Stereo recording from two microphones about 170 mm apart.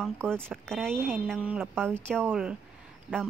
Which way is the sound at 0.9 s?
15° right (ahead or behind).